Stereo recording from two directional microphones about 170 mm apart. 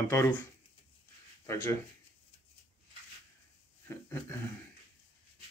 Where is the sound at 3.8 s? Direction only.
15° left (ahead or behind).